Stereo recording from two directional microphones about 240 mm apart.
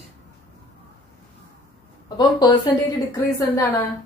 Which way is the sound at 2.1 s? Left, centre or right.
Centre.